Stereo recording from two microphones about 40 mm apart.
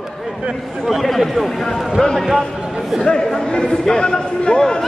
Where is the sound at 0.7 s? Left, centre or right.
Centre.